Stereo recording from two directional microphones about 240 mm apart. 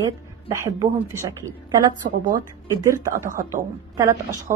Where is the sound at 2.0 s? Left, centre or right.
Right.